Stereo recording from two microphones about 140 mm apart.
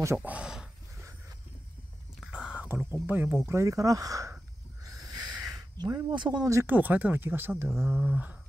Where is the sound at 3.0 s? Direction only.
15° right (ahead or behind).